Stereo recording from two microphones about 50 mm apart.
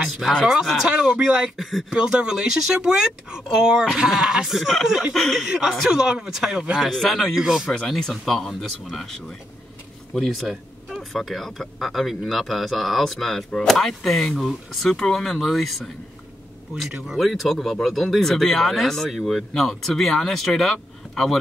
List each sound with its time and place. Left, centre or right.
0.8 s speech: centre
1.6 s speech: centre
2.0 s speech: centre
4.5 s speech: centre
5.1 s speech: centre
5.5 s speech: centre
6.9 s speech: centre
7.3 s speech: centre
8.1 s speech: centre
17.1 s speech: centre